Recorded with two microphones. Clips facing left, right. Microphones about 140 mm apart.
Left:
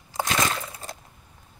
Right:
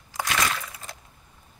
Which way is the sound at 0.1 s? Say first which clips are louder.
Left 2 dB; 25° left (ahead or behind).